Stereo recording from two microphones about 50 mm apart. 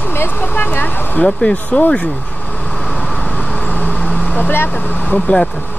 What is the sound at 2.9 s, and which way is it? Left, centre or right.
Vehicle, left.